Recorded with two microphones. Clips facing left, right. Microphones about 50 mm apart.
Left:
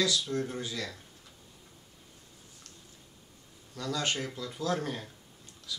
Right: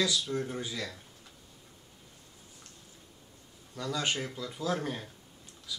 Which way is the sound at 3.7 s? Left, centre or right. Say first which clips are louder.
Even; centre.